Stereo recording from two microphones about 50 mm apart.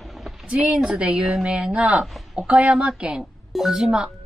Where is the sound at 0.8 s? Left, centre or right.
Centre.